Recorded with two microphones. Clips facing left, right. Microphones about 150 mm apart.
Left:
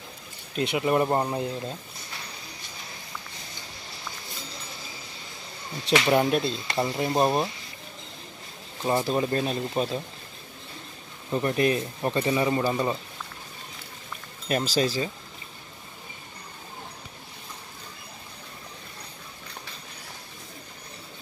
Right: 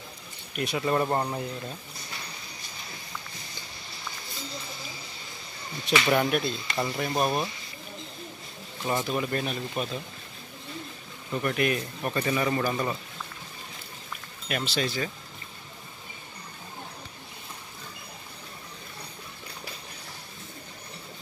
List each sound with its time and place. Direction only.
0.6 s speech: 20° left (ahead or behind)
6.0 s speech: 25° left (ahead or behind)
8.8 s speech: 30° left (ahead or behind)
11.3 s speech: 30° left (ahead or behind)
14.5 s speech: 40° left (ahead or behind)